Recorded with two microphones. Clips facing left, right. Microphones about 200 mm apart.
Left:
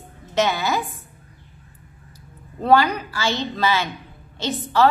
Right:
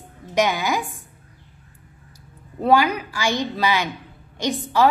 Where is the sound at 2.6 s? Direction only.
10° right (ahead or behind).